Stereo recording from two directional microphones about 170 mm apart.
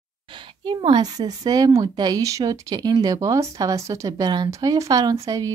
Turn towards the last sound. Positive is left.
turn(degrees=-20)  # may be behind; listen again after turning